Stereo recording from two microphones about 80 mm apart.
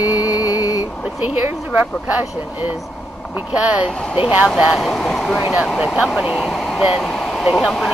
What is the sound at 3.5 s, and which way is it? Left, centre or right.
Speech, centre.